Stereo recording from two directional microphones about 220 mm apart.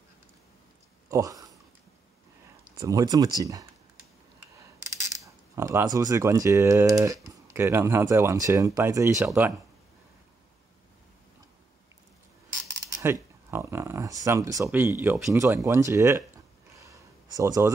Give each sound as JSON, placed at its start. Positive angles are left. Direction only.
{"t": 1.0, "sound": "a sound", "side_deg": -15}
{"t": 2.7, "sound": "speech", "side_deg": -15}
{"t": 4.6, "sound": "camera", "side_deg": -15}
{"t": 7.5, "sound": "speech", "side_deg": -10}
{"t": 12.6, "sound": "speech", "side_deg": -15}
{"t": 16.7, "sound": "a sound", "side_deg": -15}